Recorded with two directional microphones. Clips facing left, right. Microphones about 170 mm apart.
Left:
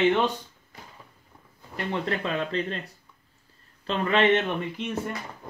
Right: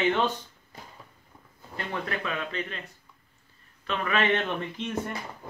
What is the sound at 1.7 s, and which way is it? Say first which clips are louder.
Speech: left 4 dB; 25° left (ahead or behind).